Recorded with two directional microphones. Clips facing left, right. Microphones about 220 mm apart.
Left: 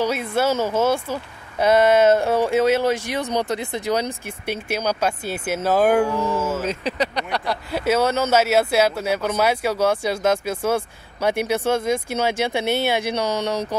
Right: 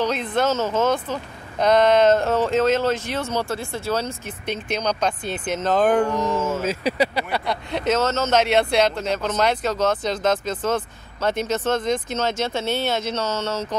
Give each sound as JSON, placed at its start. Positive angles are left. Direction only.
{"t": 0.0, "sound": "speech", "side_deg": 10}
{"t": 6.4, "sound": "speech", "side_deg": -10}